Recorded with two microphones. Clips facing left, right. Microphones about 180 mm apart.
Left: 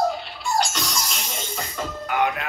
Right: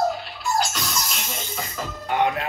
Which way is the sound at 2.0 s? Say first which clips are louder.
Right 2 dB; 30° right (ahead or behind).